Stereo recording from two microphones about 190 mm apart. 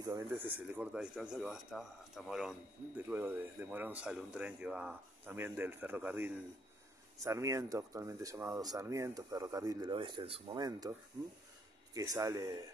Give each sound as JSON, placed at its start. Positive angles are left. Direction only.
{"t": 0.0, "sound": "speech", "side_deg": -15}